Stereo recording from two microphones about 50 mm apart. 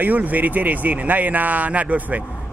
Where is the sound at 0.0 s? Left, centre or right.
Right.